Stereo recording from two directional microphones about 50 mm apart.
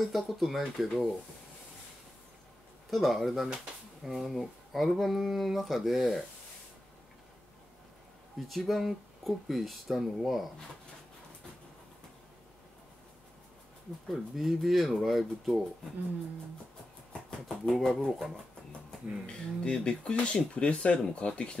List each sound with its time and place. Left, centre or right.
0.0 s speech: centre
2.9 s speech: centre
8.4 s speech: centre
14.0 s speech: centre
17.5 s speech: centre
18.7 s speech: centre
21.0 s speech: centre